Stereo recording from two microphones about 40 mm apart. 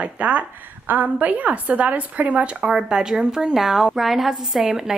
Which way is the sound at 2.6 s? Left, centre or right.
Centre.